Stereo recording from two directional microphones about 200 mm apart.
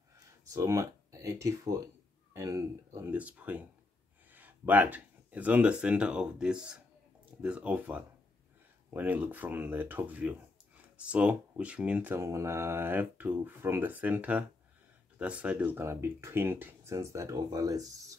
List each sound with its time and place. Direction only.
0.5 s speech: 15° right (ahead or behind)